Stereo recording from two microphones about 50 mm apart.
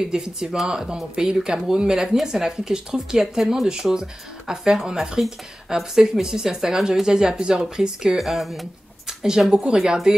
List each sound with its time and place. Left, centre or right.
0.1 s speech: centre
8.2 s speech: centre
9.0 s a sound: centre
9.5 s speech: centre